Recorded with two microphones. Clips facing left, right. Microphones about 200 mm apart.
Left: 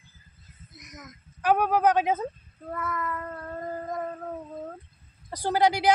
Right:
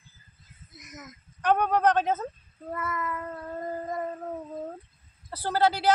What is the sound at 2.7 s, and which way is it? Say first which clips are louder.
Cat: even; 5° right (ahead or behind).